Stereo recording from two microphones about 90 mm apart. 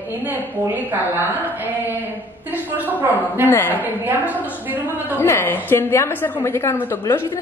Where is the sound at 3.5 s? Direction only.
25° left (ahead or behind).